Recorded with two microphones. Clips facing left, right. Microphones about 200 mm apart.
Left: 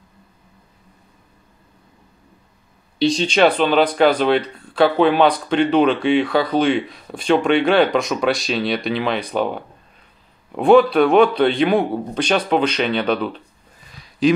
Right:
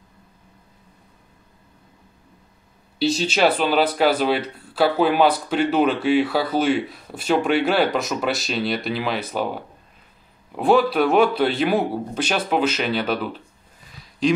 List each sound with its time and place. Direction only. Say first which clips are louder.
3.0 s speech: left 4 dB; 5° right (ahead or behind)
10.5 s a man's voice: left 5 dB; centre (ahead or behind)